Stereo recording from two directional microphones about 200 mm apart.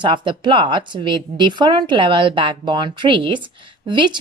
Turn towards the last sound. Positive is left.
turn(degrees=-25)  # may be behind; listen again after turning